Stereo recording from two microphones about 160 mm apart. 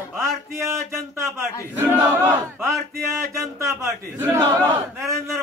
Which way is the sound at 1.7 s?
15° right (ahead or behind).